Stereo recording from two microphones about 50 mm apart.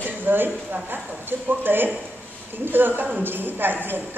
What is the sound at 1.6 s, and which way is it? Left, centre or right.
A woman's voice, right.